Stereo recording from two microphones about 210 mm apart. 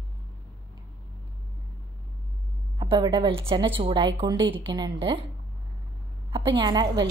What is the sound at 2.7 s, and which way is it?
Speech, 20° right (ahead or behind).